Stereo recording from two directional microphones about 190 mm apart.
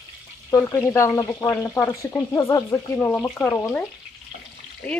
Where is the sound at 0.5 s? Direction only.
15° left (ahead or behind).